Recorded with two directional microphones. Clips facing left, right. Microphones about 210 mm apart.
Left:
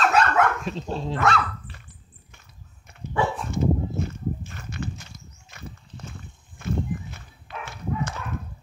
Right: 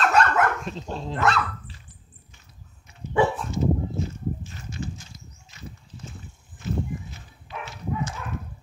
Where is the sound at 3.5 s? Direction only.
55° left (ahead or behind).